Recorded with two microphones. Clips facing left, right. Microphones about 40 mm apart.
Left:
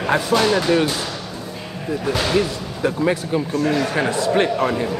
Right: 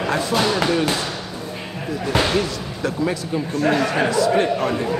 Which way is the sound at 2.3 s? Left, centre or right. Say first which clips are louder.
Left 2 dB; centre.